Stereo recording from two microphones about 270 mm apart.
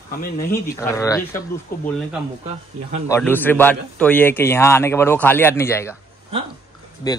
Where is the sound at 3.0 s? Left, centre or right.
Centre.